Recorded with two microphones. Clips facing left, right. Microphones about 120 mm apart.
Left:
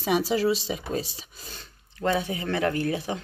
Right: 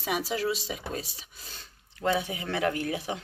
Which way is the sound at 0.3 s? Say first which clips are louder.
Left 6 dB; centre (ahead or behind).